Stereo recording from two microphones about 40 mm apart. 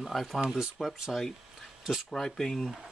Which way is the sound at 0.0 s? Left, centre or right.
Centre.